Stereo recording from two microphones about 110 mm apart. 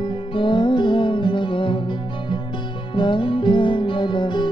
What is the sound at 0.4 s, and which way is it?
Music, 45° left (ahead or behind).